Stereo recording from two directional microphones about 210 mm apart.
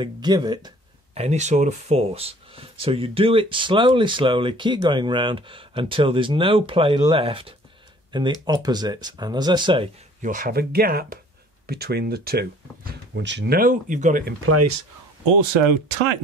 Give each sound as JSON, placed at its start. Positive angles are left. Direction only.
{"t": 0.0, "sound": "speech", "side_deg": -20}
{"t": 1.1, "sound": "speech", "side_deg": -30}
{"t": 10.2, "sound": "speech", "side_deg": -40}
{"t": 14.5, "sound": "speech", "side_deg": -90}